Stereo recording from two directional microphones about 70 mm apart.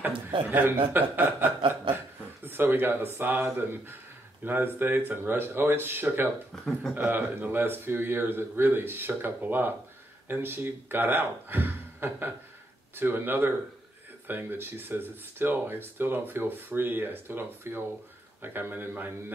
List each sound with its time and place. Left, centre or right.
0.5 s speech: right
6.5 s speech: centre
7.0 s speech: right